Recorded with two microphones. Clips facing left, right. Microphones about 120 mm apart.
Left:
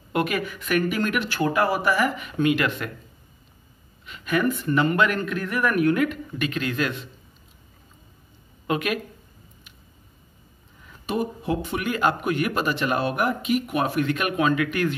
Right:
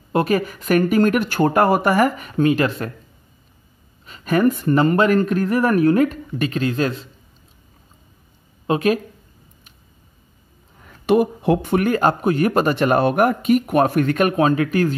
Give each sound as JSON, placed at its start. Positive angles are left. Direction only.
{"t": 0.1, "sound": "speech", "side_deg": -35}
{"t": 4.0, "sound": "speech", "side_deg": -40}
{"t": 8.6, "sound": "speech", "side_deg": -35}
{"t": 11.1, "sound": "speech", "side_deg": -65}